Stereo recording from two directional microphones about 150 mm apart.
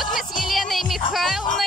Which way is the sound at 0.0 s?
Centre (ahead or behind).